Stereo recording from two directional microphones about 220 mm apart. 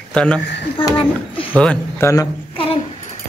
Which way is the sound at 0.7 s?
25° left (ahead or behind).